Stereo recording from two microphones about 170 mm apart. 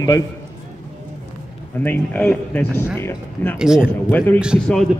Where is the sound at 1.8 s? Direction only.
10° left (ahead or behind).